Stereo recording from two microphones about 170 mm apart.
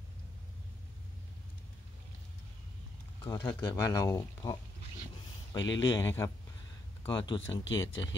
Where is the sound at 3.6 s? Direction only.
20° left (ahead or behind).